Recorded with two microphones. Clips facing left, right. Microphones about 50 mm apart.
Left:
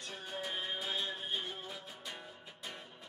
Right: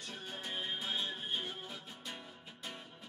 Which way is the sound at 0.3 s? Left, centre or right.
Centre.